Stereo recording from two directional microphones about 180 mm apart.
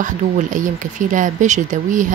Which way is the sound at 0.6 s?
45° right (ahead or behind).